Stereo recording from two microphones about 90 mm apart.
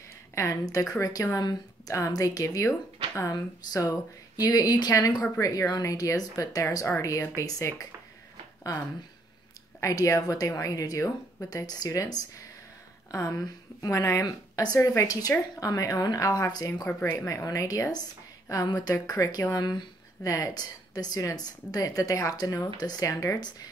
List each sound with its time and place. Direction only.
0.3 s speech: 35° left (ahead or behind)
9.8 s speech: 35° left (ahead or behind)
16.6 s speech: 35° left (ahead or behind)
19.5 s speech: 50° left (ahead or behind)
23.0 s speech: 40° left (ahead or behind)